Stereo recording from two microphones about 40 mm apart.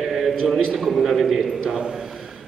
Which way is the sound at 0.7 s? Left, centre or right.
Centre.